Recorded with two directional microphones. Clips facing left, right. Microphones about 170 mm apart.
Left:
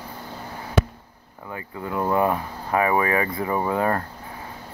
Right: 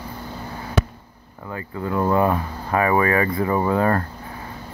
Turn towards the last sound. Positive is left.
turn(degrees=15)  # may be behind; listen again after turning